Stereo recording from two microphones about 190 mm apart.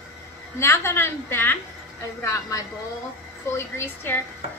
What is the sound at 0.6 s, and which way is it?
A woman's voice, 15° left (ahead or behind).